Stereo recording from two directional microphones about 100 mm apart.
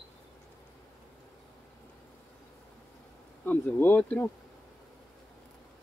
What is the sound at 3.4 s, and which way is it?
Speech, 15° left (ahead or behind).